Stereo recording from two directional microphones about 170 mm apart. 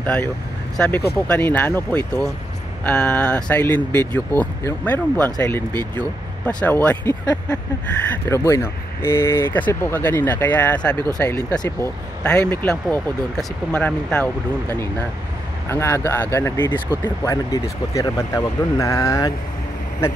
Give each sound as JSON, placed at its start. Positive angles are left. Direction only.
{"t": 0.0, "sound": "speech", "side_deg": 10}
{"t": 6.4, "sound": "speech", "side_deg": 10}
{"t": 8.3, "sound": "speech", "side_deg": 15}
{"t": 11.1, "sound": "speech", "side_deg": 20}